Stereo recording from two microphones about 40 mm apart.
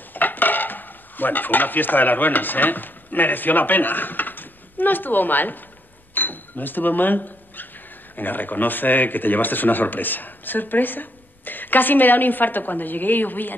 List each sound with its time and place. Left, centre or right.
0.1 s stir: left
6.1 s speech: left